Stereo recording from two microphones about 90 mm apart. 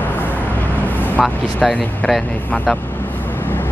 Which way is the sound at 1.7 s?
10° left (ahead or behind).